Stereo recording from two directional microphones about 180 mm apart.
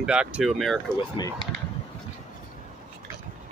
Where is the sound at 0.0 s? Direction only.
5° right (ahead or behind).